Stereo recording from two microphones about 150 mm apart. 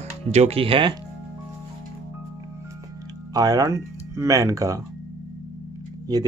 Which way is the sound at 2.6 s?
25° right (ahead or behind).